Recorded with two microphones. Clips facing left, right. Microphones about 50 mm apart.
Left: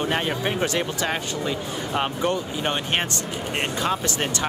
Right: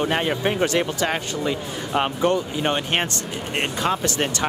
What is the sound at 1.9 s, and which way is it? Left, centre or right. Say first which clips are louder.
Speech: right 4 dB; right.